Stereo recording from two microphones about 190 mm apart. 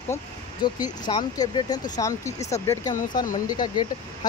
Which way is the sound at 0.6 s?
25° left (ahead or behind).